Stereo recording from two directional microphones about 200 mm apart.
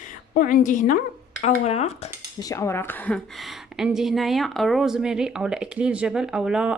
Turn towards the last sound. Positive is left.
turn(degrees=-5)  # may be behind; listen again after turning